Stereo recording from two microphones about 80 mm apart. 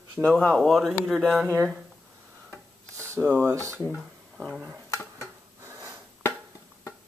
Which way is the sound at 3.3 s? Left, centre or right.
Right.